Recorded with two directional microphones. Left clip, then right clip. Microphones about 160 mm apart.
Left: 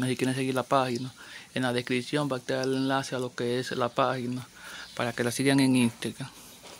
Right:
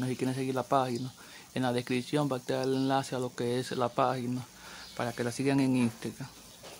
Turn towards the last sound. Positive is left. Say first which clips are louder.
# left 4 dB
turn(degrees=15)  # may be behind; listen again after turning